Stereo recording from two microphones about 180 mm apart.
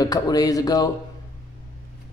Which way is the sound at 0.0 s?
20° left (ahead or behind).